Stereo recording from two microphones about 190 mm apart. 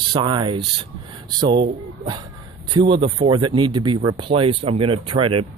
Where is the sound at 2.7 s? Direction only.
25° right (ahead or behind).